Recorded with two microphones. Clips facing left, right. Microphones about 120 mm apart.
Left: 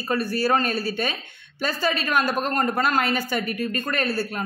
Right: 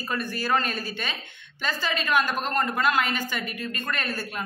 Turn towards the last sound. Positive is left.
turn(degrees=35)  # may be behind; listen again after turning